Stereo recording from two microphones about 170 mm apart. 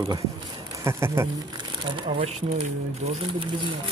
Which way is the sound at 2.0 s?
30° right (ahead or behind).